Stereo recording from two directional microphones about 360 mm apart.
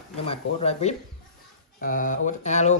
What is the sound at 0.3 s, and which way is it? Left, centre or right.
Speech, centre.